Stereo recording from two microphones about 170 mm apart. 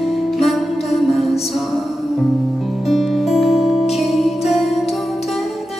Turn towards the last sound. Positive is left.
turn(degrees=0)  # may be behind; listen again after turning